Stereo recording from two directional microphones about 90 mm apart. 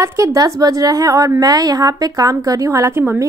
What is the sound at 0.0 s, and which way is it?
A woman's voice, 35° right (ahead or behind).